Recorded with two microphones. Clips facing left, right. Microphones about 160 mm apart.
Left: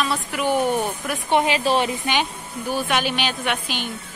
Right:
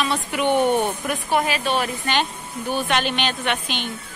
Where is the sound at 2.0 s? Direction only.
10° left (ahead or behind).